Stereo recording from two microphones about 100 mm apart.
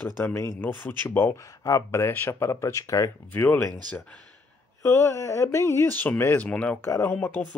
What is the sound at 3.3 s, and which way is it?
Speech, 20° left (ahead or behind).